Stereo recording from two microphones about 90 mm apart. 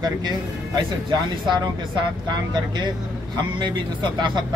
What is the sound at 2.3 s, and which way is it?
Speech, 55° right (ahead or behind).